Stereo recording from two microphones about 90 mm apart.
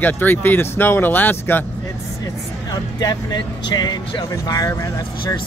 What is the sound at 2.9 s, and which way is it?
Speech, 50° left (ahead or behind).